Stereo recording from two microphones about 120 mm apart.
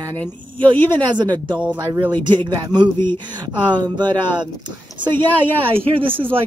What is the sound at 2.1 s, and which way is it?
Speech, 40° right (ahead or behind).